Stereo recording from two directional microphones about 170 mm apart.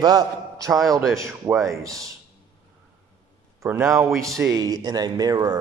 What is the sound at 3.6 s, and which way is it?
A man's voice, 15° right (ahead or behind).